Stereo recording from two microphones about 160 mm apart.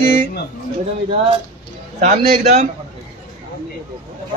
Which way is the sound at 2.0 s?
50° right (ahead or behind).